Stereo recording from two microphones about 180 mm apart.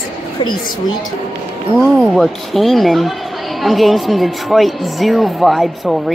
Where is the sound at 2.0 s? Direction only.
Centre (ahead or behind).